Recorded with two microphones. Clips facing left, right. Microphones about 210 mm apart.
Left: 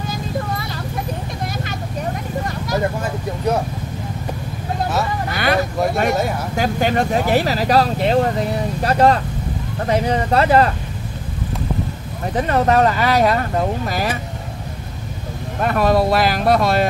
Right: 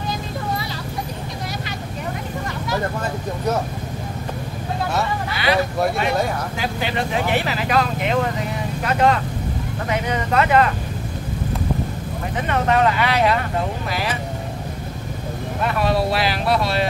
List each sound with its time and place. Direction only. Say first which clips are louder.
5.3 s vehicle: left 2 dB; 50° left (ahead or behind)
5.9 s speech: left 2 dB; 45° left (ahead or behind)
12.4 s speech: left 4 dB; 40° left (ahead or behind)
15.6 s speech: left 4 dB; 45° left (ahead or behind)